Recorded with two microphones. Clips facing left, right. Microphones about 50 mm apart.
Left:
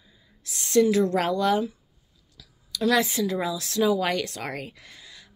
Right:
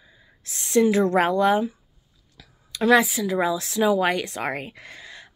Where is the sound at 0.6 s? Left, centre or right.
Right.